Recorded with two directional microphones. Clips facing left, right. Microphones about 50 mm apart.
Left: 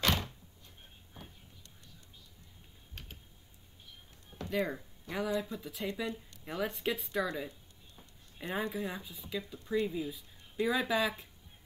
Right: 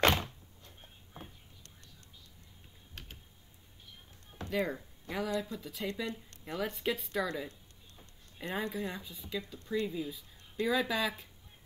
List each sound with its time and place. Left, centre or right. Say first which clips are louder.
0.0 s a sound: right 4 dB; right
2.9 s typing: even; centre
4.5 s speech: even; centre